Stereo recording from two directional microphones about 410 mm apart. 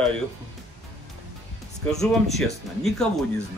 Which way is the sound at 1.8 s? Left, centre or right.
Centre.